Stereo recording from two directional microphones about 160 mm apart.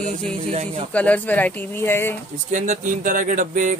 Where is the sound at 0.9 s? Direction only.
10° left (ahead or behind).